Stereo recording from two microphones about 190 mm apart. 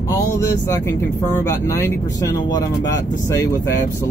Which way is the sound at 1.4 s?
15° left (ahead or behind).